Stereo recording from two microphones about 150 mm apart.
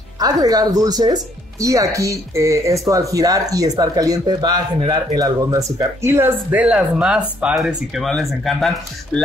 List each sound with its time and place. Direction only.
0.2 s speech: 25° right (ahead or behind); by 9.2 s centre (ahead or behind)